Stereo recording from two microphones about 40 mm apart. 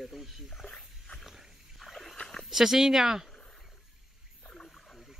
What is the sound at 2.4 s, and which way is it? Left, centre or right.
Speech, centre.